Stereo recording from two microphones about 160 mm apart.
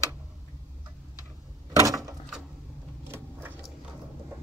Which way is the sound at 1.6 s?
20° right (ahead or behind).